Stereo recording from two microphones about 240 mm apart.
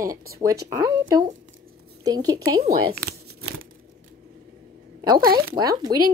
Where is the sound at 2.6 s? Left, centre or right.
Right.